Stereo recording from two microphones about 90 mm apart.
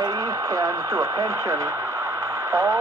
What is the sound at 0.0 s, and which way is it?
Speech, 40° right (ahead or behind).